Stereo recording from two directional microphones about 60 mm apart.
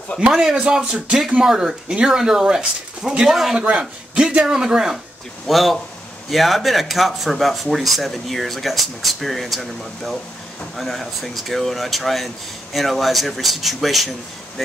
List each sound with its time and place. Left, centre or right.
0.4 s speech: centre
3.5 s speech: centre
5.5 s speech: centre